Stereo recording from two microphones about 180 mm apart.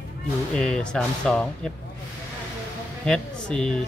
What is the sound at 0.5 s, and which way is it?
Speech, 5° left (ahead or behind).